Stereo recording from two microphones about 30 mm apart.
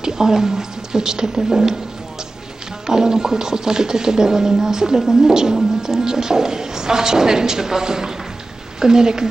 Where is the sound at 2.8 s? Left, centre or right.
Right.